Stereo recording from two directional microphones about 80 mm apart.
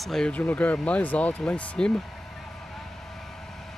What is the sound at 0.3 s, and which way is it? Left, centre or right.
Speech, centre.